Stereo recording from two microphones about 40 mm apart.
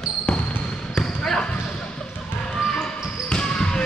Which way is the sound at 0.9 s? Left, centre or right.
Centre.